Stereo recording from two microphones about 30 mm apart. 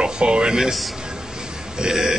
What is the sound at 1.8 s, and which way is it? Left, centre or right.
Speech, right.